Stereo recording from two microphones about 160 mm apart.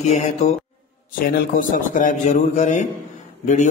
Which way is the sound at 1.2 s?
60° left (ahead or behind).